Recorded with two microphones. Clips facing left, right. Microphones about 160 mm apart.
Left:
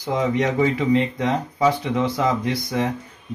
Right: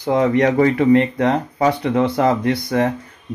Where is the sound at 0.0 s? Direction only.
60° right (ahead or behind).